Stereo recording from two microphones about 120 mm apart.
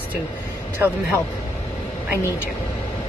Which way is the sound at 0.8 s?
20° right (ahead or behind).